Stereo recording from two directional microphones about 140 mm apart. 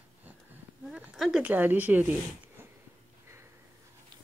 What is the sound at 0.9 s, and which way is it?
Speech, 5° right (ahead or behind).